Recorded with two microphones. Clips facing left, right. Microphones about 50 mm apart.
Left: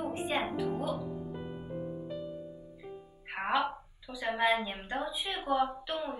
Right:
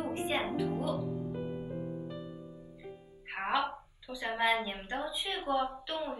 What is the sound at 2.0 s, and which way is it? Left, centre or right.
Music, centre.